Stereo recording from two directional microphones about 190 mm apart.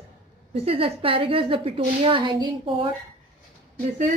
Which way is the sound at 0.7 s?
30° right (ahead or behind).